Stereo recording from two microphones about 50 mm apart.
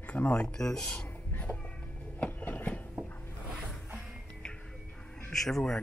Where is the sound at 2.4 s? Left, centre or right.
Left.